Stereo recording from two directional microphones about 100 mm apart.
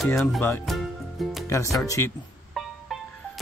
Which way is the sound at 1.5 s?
30° left (ahead or behind).